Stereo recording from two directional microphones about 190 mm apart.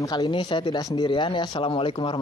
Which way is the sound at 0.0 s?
25° left (ahead or behind).